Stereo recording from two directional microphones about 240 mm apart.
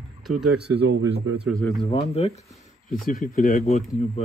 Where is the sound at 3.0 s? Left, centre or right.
Left.